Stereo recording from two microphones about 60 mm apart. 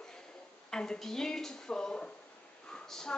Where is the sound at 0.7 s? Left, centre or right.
Centre.